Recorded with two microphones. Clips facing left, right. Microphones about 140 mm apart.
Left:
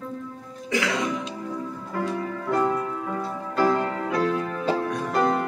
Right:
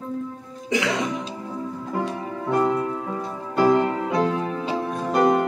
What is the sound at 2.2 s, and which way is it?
Music, 20° right (ahead or behind).